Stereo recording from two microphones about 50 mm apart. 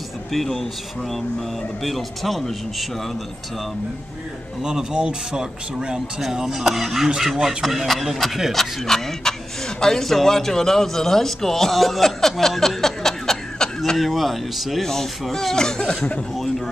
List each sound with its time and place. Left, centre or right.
0.3 s a man's voice: centre
1.8 s a man's voice: centre
4.6 s a man's voice: centre